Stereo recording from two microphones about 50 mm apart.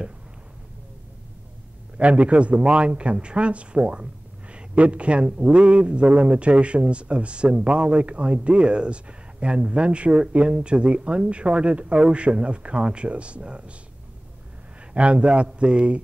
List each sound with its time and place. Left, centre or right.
2.0 s speech: right
15.0 s speech: right